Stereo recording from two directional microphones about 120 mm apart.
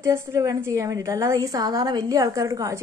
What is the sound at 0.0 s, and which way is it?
A woman's voice, 25° right (ahead or behind).